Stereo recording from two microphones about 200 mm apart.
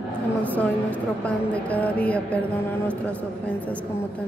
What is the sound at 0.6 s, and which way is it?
Speech, 5° left (ahead or behind).